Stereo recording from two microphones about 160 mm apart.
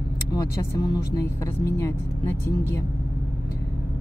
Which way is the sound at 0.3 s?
25° left (ahead or behind).